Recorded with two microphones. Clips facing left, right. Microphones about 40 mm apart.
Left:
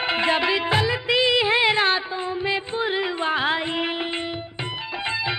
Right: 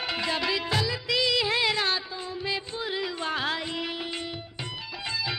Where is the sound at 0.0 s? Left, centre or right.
Left.